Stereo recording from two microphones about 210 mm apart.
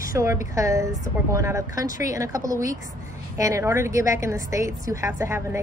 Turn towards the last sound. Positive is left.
turn(degrees=-10)  # may be behind; listen again after turning